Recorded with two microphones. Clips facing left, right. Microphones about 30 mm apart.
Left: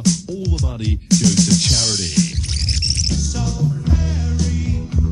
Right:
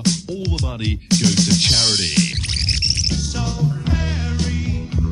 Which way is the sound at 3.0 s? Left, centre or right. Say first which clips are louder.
Even; right.